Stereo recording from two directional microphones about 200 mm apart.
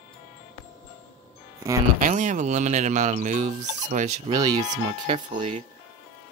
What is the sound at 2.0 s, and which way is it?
Speech, 40° right (ahead or behind).